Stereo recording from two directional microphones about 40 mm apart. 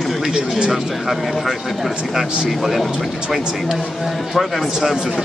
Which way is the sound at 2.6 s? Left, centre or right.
Centre.